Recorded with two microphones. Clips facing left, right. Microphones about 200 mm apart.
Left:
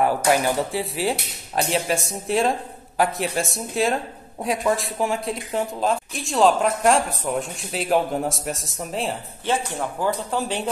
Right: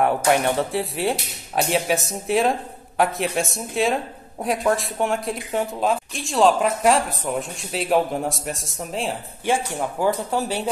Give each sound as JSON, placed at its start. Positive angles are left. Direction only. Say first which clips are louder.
{"t": 0.0, "sound": "speech", "louder": "right 1 dB", "side_deg": 0}
{"t": 9.5, "sound": "speech", "louder": "right 2 dB", "side_deg": -10}